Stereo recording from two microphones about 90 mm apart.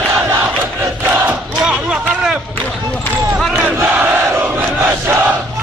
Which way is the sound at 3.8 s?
20° right (ahead or behind).